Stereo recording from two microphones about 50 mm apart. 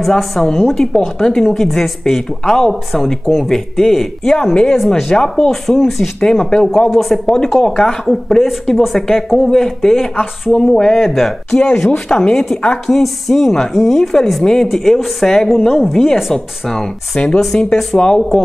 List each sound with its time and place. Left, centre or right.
0.2 s speech: centre
5.1 s speech: centre